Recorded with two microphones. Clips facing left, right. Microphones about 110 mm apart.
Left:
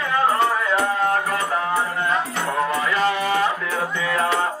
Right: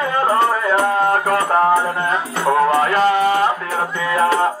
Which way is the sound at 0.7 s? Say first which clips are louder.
Right 4 dB; 50° right (ahead or behind).